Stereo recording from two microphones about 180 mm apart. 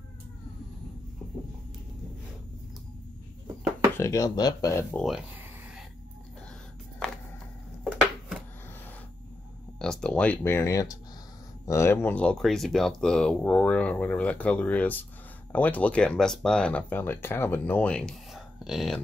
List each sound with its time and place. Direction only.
3.9 s speech: 15° left (ahead or behind)
4.9 s speech: centre (ahead or behind)
7.0 s a sound: 5° left (ahead or behind)
9.8 s speech: 5° left (ahead or behind)